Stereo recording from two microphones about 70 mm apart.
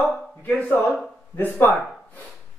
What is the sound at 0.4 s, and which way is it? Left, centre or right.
Speech, left.